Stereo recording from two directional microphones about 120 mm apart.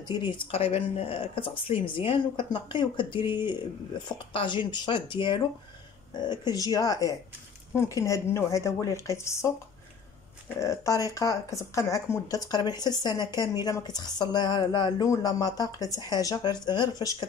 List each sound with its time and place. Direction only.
0.1 s speech: 40° left (ahead or behind)
0.5 s a woman's voice: 55° left (ahead or behind); by 9.5 s 25° left (ahead or behind)
10.6 s speech: 25° left (ahead or behind)